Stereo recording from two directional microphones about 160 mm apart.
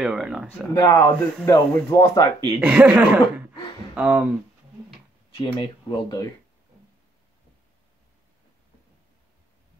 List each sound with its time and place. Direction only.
0.0 s speech: 5° right (ahead or behind)
0.7 s speech: 15° left (ahead or behind)
2.6 s speech: 10° right (ahead or behind)
5.4 s speech: 30° left (ahead or behind)